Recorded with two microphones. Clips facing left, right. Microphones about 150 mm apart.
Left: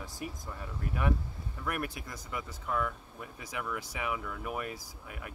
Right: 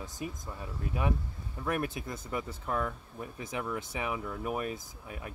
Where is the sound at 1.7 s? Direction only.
25° right (ahead or behind).